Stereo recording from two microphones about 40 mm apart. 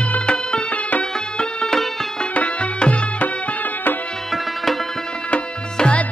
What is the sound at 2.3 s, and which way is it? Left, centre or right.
Music, left.